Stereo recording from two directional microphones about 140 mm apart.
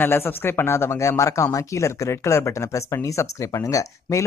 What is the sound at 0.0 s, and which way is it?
Speech, 15° left (ahead or behind).